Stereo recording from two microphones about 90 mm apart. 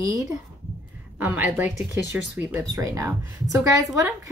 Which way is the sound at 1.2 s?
20° right (ahead or behind).